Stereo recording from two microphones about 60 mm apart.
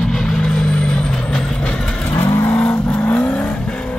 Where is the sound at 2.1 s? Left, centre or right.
Left.